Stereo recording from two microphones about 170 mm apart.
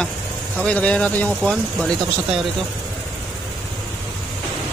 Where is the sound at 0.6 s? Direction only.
5° left (ahead or behind).